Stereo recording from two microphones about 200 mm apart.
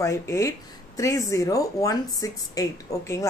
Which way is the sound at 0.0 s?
15° left (ahead or behind).